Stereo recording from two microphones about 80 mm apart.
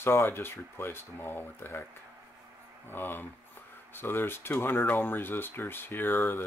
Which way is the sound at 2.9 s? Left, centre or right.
Left.